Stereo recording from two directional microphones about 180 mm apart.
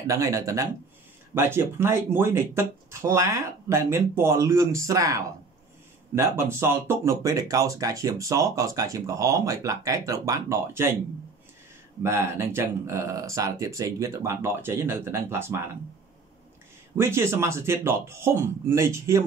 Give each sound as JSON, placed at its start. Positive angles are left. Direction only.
{"t": 0.0, "sound": "speech", "side_deg": -20}
{"t": 12.0, "sound": "speech", "side_deg": -15}
{"t": 16.9, "sound": "speech", "side_deg": -15}